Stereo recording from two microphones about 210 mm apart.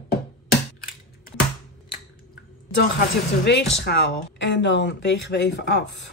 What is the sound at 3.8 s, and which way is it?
Speech, 50° left (ahead or behind).